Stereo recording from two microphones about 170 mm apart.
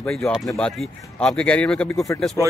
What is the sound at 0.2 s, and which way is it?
Speech, centre (ahead or behind).